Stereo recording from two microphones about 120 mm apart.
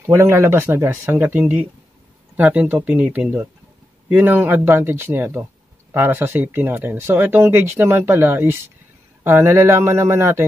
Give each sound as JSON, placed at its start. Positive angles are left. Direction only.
{"t": 0.0, "sound": "speech", "side_deg": -20}